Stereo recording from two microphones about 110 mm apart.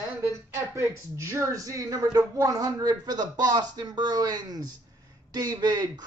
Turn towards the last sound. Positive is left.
turn(degrees=-40)  # may be behind; listen again after turning